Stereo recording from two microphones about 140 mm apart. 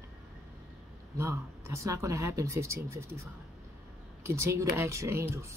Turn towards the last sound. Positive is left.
turn(degrees=-20)  # may be behind; listen again after turning